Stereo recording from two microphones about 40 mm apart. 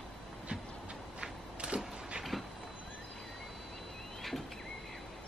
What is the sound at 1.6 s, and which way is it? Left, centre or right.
Power windows, right.